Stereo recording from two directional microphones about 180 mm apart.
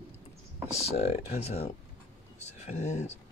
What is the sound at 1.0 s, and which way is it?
Speech, 35° left (ahead or behind).